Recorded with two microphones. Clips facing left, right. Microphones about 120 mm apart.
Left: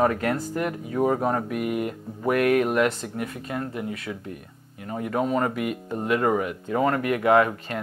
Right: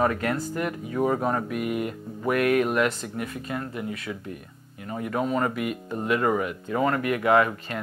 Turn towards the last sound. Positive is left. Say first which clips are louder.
# left 2 dB
turn(degrees=45)  # may be behind; listen again after turning